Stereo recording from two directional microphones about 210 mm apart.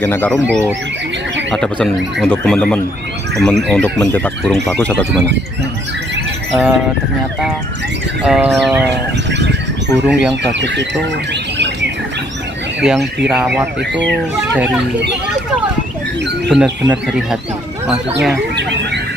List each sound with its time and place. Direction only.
0.0 s speech: 10° left (ahead or behind)
1.5 s speech: centre (ahead or behind)
6.5 s speech: 5° right (ahead or behind)
8.3 s speech: centre (ahead or behind)
10.0 s speech: 5° right (ahead or behind)
10.5 s speech: 55° right (ahead or behind)
11.5 s bird: 55° right (ahead or behind)
12.8 s speech: 5° right (ahead or behind)
16.5 s speech: centre (ahead or behind)